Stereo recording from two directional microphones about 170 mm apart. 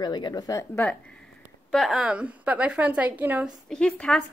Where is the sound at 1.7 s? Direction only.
Centre (ahead or behind).